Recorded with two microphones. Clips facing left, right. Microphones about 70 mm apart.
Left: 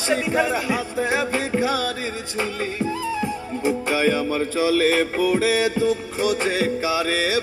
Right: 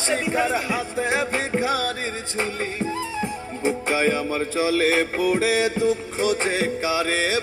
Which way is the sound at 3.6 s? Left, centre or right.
Right.